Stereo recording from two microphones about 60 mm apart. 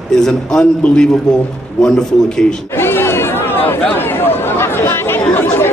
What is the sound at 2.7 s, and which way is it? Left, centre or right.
Chatter, left.